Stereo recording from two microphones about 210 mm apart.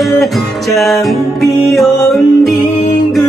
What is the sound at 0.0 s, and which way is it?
Music, centre (ahead or behind).